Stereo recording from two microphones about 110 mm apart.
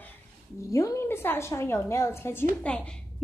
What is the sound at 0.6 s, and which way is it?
Speech, 30° left (ahead or behind).